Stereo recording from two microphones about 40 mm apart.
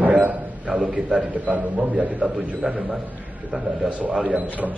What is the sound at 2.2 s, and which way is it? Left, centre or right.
Speech, right.